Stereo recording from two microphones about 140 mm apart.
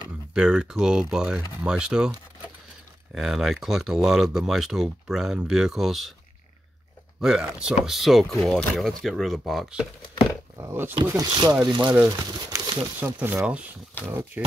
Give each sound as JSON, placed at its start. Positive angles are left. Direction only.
{"t": 0.3, "sound": "speech", "side_deg": -5}
{"t": 3.2, "sound": "speech", "side_deg": 0}
{"t": 7.2, "sound": "speech", "side_deg": -5}
{"t": 10.6, "sound": "speech", "side_deg": -15}
{"t": 11.0, "sound": "speech", "side_deg": -30}
{"t": 13.0, "sound": "speech", "side_deg": -15}